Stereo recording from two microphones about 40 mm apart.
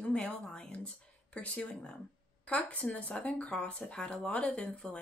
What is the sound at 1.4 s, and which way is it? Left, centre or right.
Speech, left.